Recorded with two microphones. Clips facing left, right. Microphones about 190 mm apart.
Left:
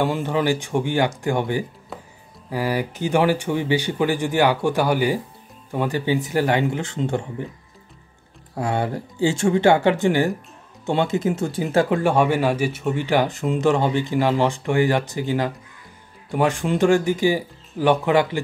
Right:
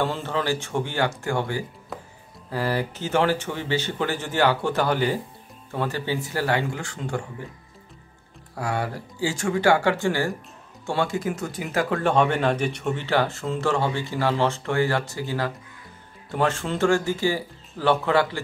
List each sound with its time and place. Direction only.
0.0 s speech: 15° left (ahead or behind)
8.5 s speech: 25° left (ahead or behind)
12.0 s speech: 10° left (ahead or behind)